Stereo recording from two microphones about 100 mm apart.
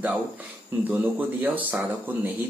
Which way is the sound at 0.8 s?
15° right (ahead or behind).